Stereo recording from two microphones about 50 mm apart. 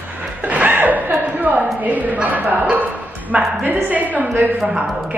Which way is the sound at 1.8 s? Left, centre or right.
Right.